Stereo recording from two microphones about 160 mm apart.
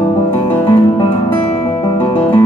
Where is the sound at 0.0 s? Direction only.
10° left (ahead or behind).